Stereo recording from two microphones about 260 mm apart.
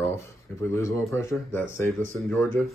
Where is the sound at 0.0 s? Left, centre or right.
Centre.